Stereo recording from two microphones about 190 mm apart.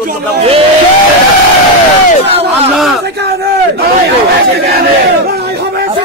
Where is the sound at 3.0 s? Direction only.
60° right (ahead or behind).